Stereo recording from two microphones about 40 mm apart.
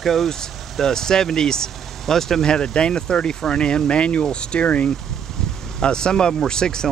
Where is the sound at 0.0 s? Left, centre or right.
Centre.